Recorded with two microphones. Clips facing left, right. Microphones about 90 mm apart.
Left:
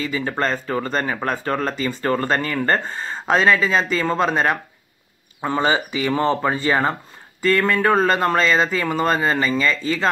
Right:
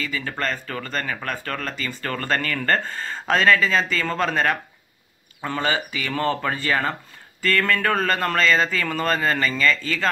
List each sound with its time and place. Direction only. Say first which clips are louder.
0.0 s speech: left 5 dB; 25° left (ahead or behind)